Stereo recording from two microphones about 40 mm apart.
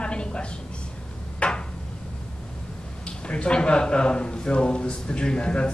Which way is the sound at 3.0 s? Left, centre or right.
Left.